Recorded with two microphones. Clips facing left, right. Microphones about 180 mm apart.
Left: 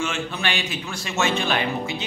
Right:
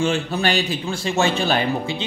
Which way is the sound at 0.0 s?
35° right (ahead or behind).